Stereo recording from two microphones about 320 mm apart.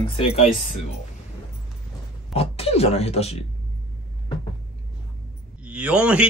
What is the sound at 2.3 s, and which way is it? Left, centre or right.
Speech, centre.